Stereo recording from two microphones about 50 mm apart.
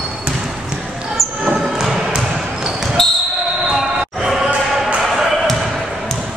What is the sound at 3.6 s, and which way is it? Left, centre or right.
Basketball bounce, centre.